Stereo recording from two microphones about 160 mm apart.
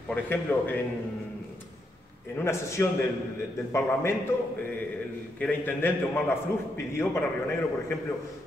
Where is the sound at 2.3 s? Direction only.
15° left (ahead or behind).